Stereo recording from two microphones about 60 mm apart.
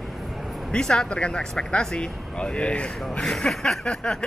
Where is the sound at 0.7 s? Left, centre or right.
Centre.